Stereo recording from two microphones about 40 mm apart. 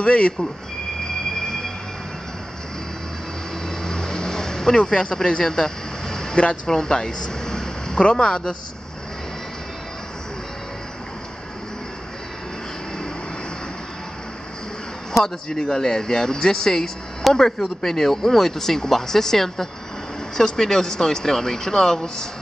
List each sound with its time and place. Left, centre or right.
0.0 s speech: left
3.8 s vehicle: centre
6.3 s speech: left
6.7 s a sound: centre
8.0 s speech: left
15.5 s speech: centre